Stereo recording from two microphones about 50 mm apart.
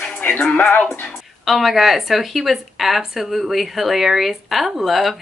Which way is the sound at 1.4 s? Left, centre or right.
Centre.